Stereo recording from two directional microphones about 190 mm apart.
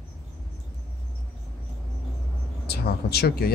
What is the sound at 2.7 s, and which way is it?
Speech, 55° left (ahead or behind).